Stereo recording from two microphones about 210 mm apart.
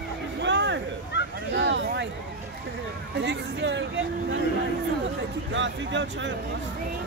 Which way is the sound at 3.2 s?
60° right (ahead or behind).